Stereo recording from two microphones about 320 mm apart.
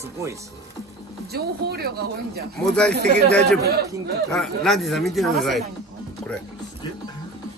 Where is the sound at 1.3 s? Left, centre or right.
Right.